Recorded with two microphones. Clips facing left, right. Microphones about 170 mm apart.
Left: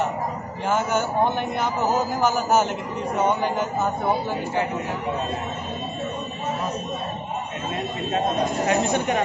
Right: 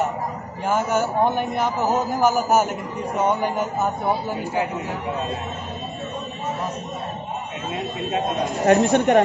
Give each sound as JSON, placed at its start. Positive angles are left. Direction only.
{"t": 0.7, "sound": "a man's voice", "side_deg": -5}
{"t": 8.6, "sound": "speech", "side_deg": -60}